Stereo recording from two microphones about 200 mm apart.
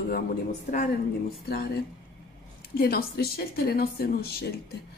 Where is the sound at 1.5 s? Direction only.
50° left (ahead or behind).